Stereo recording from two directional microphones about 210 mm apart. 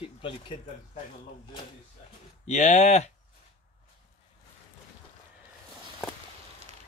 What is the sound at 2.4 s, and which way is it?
Speech, 35° left (ahead or behind).